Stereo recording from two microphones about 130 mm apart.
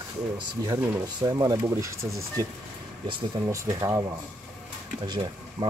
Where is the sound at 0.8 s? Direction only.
25° right (ahead or behind).